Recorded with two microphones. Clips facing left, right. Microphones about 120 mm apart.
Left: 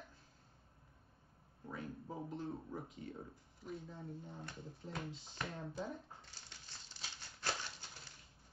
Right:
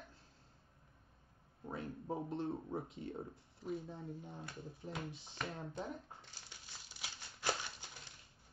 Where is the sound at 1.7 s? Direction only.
25° right (ahead or behind).